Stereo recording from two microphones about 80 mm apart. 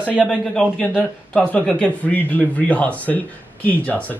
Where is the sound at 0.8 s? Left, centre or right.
Centre.